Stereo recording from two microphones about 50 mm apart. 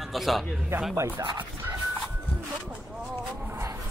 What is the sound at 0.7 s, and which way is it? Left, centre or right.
Speech, right.